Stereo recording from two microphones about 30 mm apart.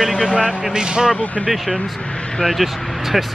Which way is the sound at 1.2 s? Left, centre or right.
Left.